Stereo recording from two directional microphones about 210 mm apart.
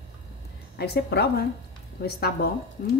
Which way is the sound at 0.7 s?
50° left (ahead or behind).